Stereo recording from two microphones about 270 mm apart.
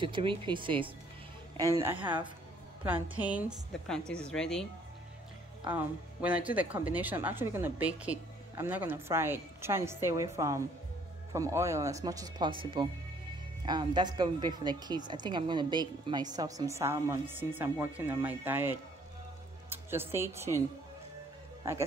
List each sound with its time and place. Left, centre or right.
0.0 s a woman's voice: centre
5.7 s a woman's voice: centre